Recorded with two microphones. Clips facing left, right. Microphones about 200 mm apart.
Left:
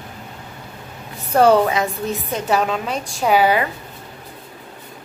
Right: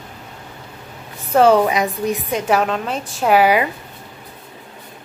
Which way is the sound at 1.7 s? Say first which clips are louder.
Right 2 dB; 15° right (ahead or behind).